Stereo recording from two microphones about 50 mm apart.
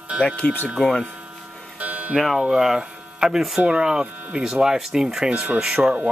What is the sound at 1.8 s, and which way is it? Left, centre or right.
Music, right.